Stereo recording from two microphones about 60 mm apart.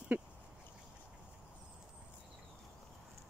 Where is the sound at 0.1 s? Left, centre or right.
Right.